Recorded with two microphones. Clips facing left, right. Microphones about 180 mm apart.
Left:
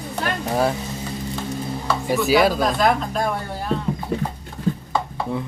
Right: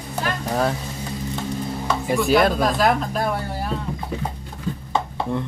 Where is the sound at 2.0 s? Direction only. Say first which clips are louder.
Even; 5° left (ahead or behind).